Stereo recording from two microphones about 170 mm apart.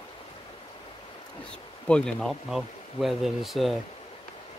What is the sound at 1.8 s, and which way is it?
Speech, 5° left (ahead or behind).